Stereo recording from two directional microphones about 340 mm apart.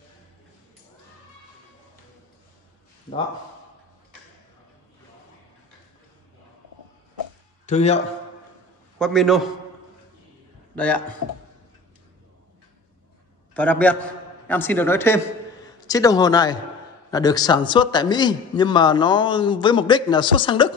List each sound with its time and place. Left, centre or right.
7.6 s a man's voice: centre
8.9 s a man's voice: centre
10.8 s speech: centre
13.6 s a man's voice: centre